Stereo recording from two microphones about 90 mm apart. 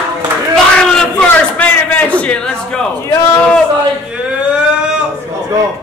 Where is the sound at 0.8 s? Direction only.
5° left (ahead or behind).